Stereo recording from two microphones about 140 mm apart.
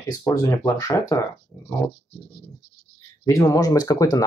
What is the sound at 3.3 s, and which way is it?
Speech, 25° left (ahead or behind).